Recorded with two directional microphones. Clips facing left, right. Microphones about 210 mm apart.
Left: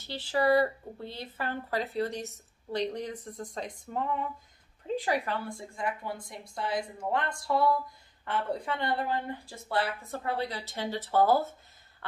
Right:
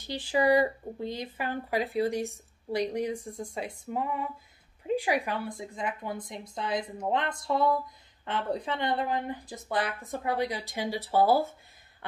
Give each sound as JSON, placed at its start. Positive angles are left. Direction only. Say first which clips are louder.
{"t": 0.0, "sound": "a woman's voice", "louder": "right 2 dB", "side_deg": -15}
{"t": 12.0, "sound": "cough", "louder": "right 2 dB", "side_deg": -15}